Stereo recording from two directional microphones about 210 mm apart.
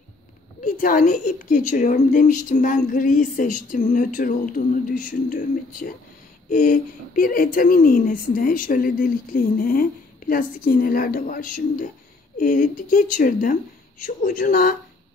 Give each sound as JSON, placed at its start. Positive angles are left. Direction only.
{"t": 0.7, "sound": "a woman's voice", "side_deg": 40}